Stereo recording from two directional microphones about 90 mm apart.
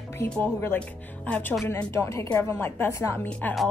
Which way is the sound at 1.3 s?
20° left (ahead or behind).